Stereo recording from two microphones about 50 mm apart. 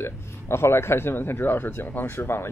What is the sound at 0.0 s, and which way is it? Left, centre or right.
Speech, left.